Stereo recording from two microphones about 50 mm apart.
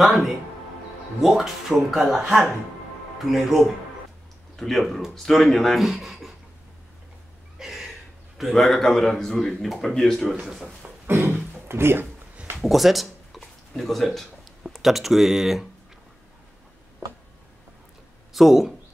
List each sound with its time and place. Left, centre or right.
0.0 s a man's voice: centre
4.7 s a man's voice: centre
7.5 s a sound: centre
8.4 s a man's voice: centre
11.1 s a sound: right
11.6 s speech: right
12.6 s speech: centre
13.4 s a sound: centre
18.3 s speech: centre